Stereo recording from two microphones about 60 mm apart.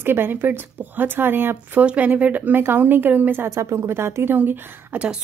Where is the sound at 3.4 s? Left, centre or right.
Right.